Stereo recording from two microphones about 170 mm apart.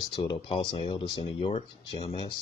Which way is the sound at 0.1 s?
30° left (ahead or behind).